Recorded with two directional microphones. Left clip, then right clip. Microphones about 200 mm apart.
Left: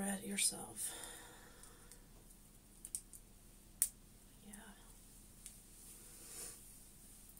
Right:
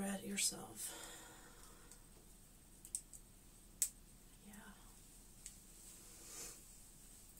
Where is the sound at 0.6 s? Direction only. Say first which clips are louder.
Left 2 dB; 10° right (ahead or behind).